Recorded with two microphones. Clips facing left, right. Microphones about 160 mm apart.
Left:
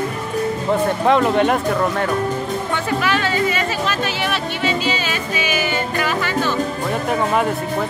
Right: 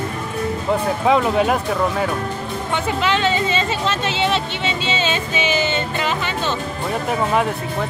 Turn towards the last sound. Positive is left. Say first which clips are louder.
# left 2 dB
turn(degrees=-20)  # may be behind; listen again after turning